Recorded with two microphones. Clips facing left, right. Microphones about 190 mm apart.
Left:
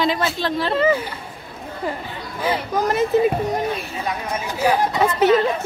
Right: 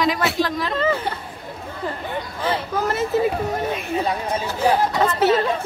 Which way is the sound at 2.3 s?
10° left (ahead or behind).